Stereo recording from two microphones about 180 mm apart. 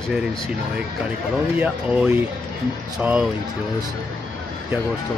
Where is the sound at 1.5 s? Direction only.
5° right (ahead or behind).